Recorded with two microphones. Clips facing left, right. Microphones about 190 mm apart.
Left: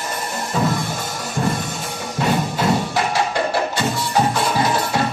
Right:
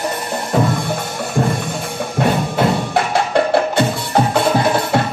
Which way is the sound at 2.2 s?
55° right (ahead or behind).